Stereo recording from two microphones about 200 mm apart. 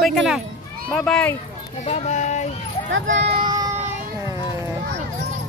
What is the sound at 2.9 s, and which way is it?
Speech, 65° right (ahead or behind).